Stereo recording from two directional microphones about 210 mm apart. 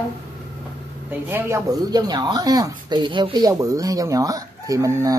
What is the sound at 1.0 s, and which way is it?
Speech, 10° right (ahead or behind).